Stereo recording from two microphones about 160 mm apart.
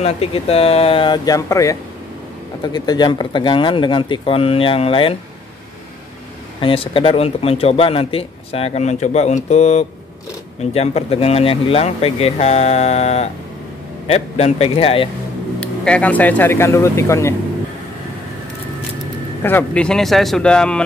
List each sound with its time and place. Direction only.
0.0 s speech: 40° left (ahead or behind)
6.6 s speech: 35° left (ahead or behind)
15.6 s speech: 5° left (ahead or behind)
19.4 s speech: 10° left (ahead or behind)